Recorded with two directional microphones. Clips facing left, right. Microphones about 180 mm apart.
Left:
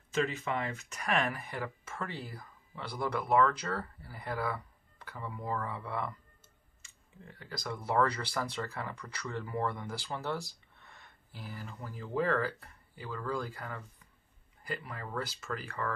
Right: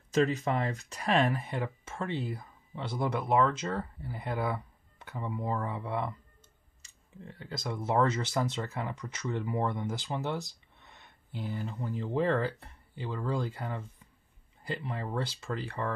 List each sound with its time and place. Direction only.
0.1 s speech: 40° right (ahead or behind)